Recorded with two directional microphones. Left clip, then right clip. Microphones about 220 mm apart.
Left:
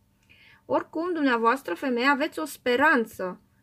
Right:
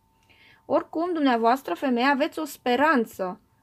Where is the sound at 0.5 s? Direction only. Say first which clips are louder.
Right 2 dB; 30° right (ahead or behind).